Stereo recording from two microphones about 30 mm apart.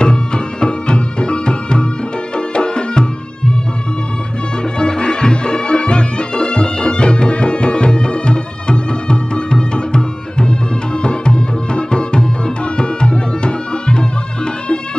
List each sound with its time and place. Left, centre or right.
0.0 s music: left
4.7 s music: left